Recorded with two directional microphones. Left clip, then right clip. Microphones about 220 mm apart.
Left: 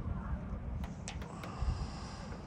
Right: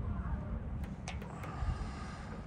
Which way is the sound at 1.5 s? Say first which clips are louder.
Right 1 dB; 15° left (ahead or behind).